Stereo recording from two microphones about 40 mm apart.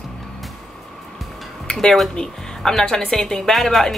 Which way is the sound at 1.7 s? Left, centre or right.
Centre.